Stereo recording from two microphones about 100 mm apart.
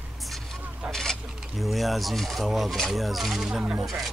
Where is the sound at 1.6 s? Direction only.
Centre (ahead or behind).